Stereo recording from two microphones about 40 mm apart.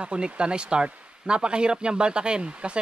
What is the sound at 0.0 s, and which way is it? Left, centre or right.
Speech, right.